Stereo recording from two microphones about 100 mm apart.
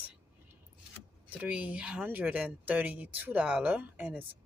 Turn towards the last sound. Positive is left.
turn(degrees=-15)  # may be behind; listen again after turning